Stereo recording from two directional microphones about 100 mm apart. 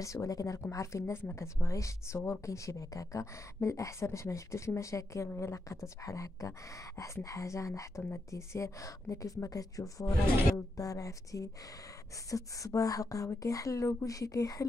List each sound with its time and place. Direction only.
0.0 s speech: 30° left (ahead or behind)